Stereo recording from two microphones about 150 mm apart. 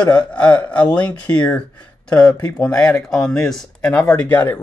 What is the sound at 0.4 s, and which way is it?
Speech, 10° left (ahead or behind).